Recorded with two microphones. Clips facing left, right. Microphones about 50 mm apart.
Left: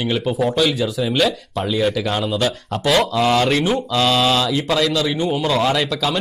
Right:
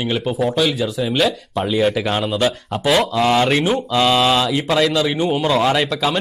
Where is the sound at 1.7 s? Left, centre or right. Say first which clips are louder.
Right 2 dB; centre.